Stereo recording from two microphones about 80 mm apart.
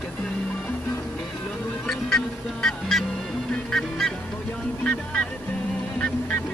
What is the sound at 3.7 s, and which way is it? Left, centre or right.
Goose, centre.